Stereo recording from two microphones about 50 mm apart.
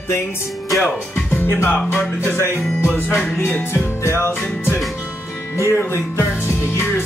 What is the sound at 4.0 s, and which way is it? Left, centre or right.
Music, left.